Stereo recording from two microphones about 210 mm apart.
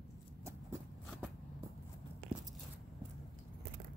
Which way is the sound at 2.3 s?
5° right (ahead or behind).